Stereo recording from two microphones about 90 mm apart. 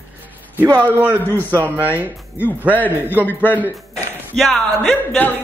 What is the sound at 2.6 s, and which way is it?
Speech, 20° right (ahead or behind).